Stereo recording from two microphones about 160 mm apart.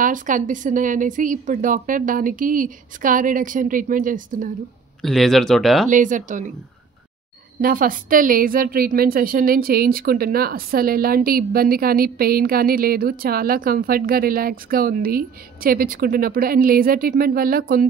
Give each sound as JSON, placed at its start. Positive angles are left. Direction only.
{"t": 0.0, "sound": "speech", "side_deg": -55}
{"t": 5.0, "sound": "speech", "side_deg": 0}
{"t": 5.9, "sound": "speech", "side_deg": -55}
{"t": 7.6, "sound": "a woman's voice", "side_deg": -65}